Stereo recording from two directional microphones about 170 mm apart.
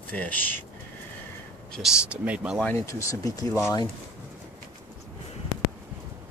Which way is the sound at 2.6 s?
15° left (ahead or behind).